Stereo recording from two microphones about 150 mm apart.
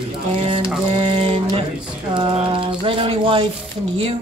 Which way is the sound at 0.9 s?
35° right (ahead or behind).